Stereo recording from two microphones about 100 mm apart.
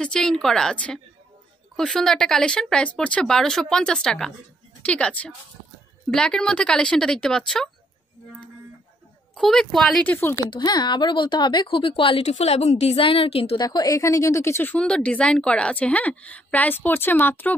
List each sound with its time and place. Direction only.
0.0 s speech: 5° left (ahead or behind)
9.3 s speech: 5° left (ahead or behind)
10.0 s speech: 25° left (ahead or behind)
10.4 s a woman's voice: 45° left (ahead or behind); by 13.6 s 70° left (ahead or behind)
13.6 s speech: 40° left (ahead or behind); by 17.6 s 20° left (ahead or behind)